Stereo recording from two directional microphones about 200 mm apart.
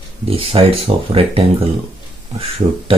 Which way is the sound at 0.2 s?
30° right (ahead or behind).